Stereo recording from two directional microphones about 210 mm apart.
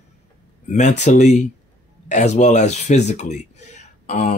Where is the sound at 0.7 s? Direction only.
35° left (ahead or behind).